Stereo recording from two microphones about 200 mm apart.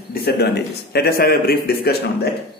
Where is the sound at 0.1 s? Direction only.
55° left (ahead or behind).